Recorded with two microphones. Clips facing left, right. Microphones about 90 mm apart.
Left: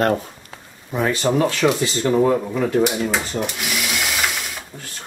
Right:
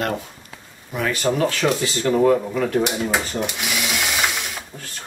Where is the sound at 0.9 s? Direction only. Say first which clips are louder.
Left 2 dB; 25° left (ahead or behind).